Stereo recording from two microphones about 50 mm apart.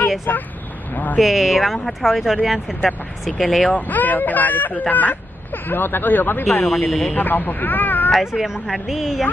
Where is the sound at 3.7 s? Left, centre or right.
Left.